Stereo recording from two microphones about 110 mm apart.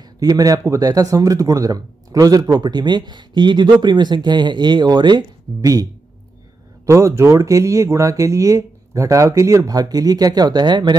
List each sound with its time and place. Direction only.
0.2 s speech: 35° right (ahead or behind)
5.6 s speech: 30° right (ahead or behind)
6.9 s speech: 25° right (ahead or behind)